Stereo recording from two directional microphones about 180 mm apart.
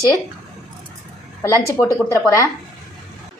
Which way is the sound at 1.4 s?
15° left (ahead or behind).